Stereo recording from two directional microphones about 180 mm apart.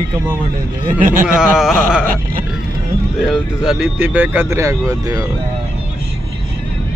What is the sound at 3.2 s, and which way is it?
Speech, centre (ahead or behind).